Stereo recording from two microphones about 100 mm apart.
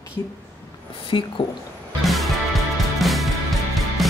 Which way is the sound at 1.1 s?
55° left (ahead or behind).